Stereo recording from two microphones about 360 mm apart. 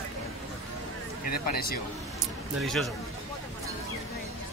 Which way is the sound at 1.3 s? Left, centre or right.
Left.